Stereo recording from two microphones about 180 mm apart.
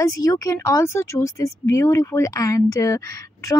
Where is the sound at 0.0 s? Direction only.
20° left (ahead or behind).